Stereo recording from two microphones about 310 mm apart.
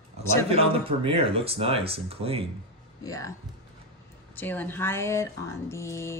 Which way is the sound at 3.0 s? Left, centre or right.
Centre.